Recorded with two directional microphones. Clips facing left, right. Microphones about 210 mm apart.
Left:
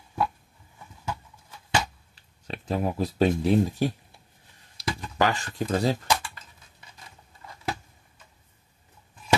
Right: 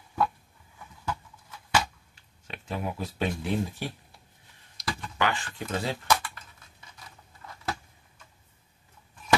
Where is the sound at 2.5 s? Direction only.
40° left (ahead or behind).